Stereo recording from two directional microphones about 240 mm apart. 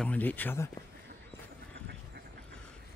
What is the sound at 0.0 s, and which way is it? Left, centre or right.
Speech, centre.